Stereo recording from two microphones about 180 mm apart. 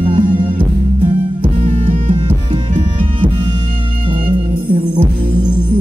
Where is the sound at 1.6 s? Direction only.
40° right (ahead or behind).